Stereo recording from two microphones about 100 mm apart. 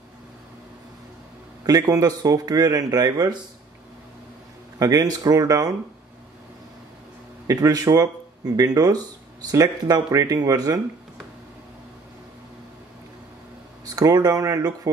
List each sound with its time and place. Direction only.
1.6 s speech: 40° right (ahead or behind)
4.7 s speech: 35° right (ahead or behind)
7.4 s speech: 35° right (ahead or behind)
13.8 s speech: 40° right (ahead or behind)